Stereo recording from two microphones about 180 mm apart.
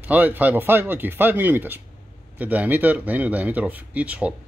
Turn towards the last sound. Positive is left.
turn(degrees=-10)  # may be behind; listen again after turning